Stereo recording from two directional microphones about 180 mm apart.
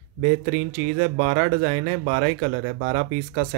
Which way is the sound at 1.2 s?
60° right (ahead or behind).